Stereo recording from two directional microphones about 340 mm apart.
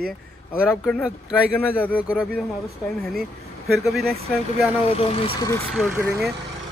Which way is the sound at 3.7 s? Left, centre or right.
Centre.